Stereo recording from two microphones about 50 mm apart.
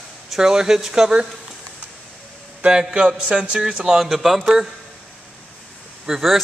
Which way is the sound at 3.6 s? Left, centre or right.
Centre.